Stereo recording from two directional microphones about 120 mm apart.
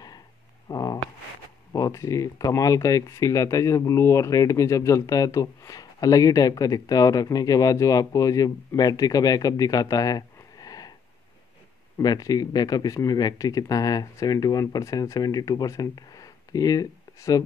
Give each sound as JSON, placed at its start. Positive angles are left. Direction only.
{"t": 0.7, "sound": "a sound", "side_deg": 30}
{"t": 1.7, "sound": "speech", "side_deg": 25}
{"t": 12.0, "sound": "speech", "side_deg": 35}